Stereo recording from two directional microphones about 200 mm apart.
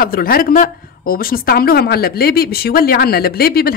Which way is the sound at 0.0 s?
45° left (ahead or behind).